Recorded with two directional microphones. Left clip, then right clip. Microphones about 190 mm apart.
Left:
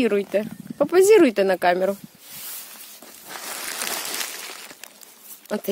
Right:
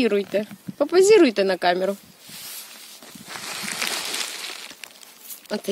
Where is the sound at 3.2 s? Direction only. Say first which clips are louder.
Right 1 dB; 30° left (ahead or behind).